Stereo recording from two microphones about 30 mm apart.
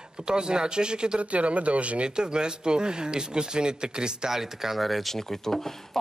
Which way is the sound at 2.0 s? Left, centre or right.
Right.